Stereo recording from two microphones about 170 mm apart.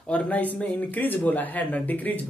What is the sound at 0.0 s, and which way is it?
Speech, 5° left (ahead or behind).